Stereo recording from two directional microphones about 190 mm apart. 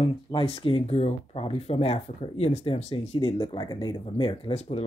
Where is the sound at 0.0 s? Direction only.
30° left (ahead or behind).